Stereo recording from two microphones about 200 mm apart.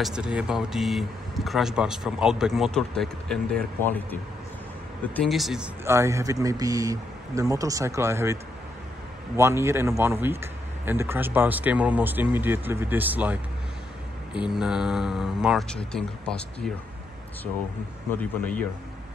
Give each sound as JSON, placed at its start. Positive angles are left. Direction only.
{"t": 0.0, "sound": "speech", "side_deg": -5}
{"t": 5.9, "sound": "speech", "side_deg": -15}
{"t": 9.4, "sound": "speech", "side_deg": -15}
{"t": 14.5, "sound": "speech", "side_deg": -5}
{"t": 18.4, "sound": "a man's voice", "side_deg": 5}